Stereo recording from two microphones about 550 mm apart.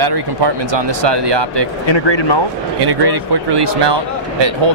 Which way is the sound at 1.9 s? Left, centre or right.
Left.